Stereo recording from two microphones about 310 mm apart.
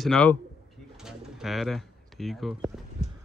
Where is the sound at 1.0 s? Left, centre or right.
Centre.